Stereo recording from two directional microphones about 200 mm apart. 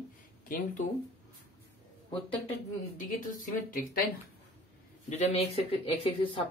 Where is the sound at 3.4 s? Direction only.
45° left (ahead or behind).